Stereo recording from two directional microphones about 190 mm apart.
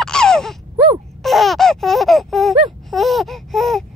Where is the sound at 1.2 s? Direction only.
Centre (ahead or behind).